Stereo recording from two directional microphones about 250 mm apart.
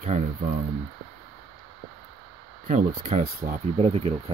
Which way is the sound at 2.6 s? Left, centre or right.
Right.